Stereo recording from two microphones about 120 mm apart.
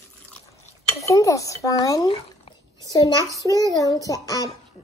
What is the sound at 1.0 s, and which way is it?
Speech, 25° left (ahead or behind).